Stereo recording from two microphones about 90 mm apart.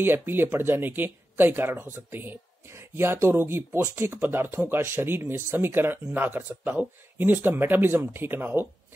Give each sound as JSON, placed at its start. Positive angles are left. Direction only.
{"t": 0.0, "sound": "speech", "side_deg": -25}